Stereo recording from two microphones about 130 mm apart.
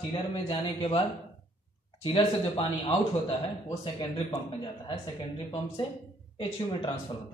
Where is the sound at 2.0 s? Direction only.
40° left (ahead or behind).